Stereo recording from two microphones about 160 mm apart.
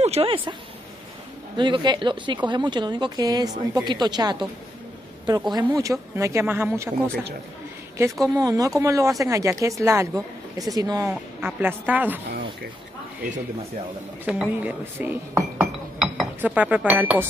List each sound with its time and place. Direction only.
0.0 s speech: 40° right (ahead or behind)
1.6 s speech: 30° right (ahead or behind)
8.0 s speech: 20° right (ahead or behind)
14.2 s speech: 10° right (ahead or behind)
16.0 s chink: 10° right (ahead or behind)